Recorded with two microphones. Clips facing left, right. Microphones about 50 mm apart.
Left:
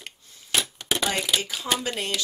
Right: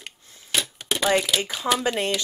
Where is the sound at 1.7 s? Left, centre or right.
Right.